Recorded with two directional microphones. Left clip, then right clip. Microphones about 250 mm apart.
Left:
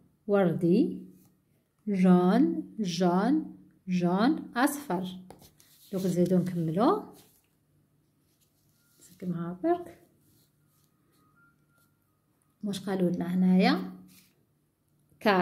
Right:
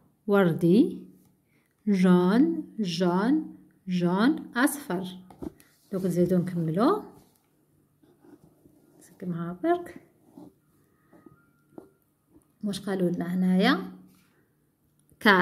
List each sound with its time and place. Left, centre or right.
0.3 s speech: right
1.9 s a woman's voice: right
9.2 s a woman's voice: centre
12.5 s a woman's voice: centre